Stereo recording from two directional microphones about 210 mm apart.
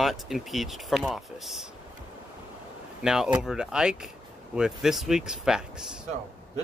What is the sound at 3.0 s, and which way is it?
Speech, centre (ahead or behind).